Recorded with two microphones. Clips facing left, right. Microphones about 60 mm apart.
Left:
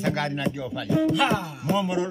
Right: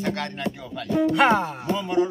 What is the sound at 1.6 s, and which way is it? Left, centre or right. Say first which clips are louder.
Music: left 1 dB; centre.